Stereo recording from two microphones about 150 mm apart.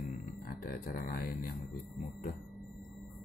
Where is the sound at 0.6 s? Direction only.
75° left (ahead or behind).